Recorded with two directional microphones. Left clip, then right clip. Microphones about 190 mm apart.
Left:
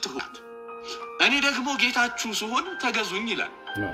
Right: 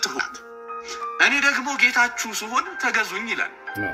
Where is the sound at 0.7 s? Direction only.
25° left (ahead or behind).